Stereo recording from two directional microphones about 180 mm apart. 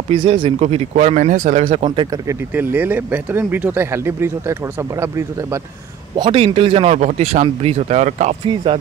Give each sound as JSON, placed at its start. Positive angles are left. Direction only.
{"t": 0.1, "sound": "speech", "side_deg": -25}
{"t": 1.9, "sound": "speech", "side_deg": -25}
{"t": 2.5, "sound": "speech", "side_deg": -10}
{"t": 6.1, "sound": "speech", "side_deg": -30}